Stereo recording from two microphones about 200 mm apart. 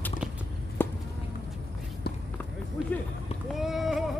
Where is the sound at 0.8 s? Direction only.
10° left (ahead or behind).